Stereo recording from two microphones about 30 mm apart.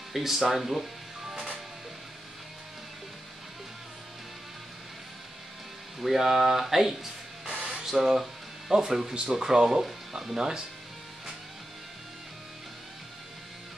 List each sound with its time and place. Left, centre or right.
0.1 s music: centre
5.9 s speech: centre